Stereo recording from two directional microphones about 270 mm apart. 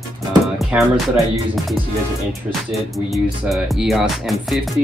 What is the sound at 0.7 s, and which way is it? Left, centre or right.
Speech, centre.